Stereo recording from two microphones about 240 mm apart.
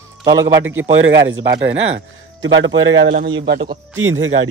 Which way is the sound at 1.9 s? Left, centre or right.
Right.